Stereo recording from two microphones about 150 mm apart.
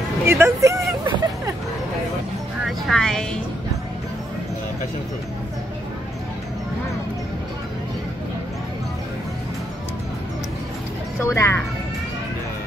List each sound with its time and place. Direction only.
0.2 s speech: 15° right (ahead or behind)
2.9 s a woman's voice: 5° left (ahead or behind)
11.2 s speech: 15° left (ahead or behind)